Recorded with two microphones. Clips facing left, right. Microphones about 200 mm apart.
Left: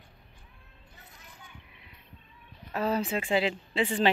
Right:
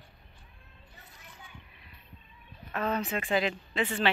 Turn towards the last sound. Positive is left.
turn(degrees=25)  # may be behind; listen again after turning